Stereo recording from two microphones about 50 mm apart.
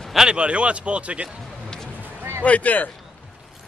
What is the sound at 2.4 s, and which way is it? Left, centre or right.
Speech, left.